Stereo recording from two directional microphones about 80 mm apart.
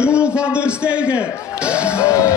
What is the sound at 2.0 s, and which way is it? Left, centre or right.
Music, left.